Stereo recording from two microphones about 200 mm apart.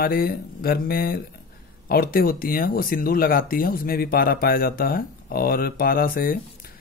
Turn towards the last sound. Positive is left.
turn(degrees=45)  # may be behind; listen again after turning